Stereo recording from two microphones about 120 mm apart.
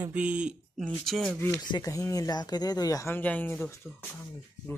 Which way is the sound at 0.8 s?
5° left (ahead or behind).